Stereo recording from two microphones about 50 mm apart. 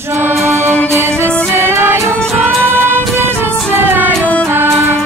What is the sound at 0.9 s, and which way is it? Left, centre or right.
Music, right.